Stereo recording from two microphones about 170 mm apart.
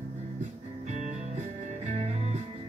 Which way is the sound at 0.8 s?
45° right (ahead or behind).